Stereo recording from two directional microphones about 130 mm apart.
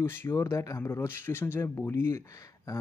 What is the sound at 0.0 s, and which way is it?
Speech, 15° left (ahead or behind).